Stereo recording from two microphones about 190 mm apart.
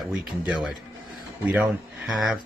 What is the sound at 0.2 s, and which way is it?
Speech, 5° right (ahead or behind).